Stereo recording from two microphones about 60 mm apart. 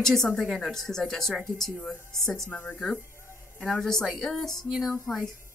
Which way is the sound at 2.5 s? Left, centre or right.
Left.